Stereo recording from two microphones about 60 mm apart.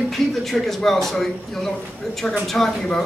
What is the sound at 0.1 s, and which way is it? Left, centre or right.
Speech, centre.